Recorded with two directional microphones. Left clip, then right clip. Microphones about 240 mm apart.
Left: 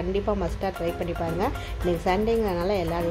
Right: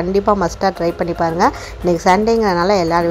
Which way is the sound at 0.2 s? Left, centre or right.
Right.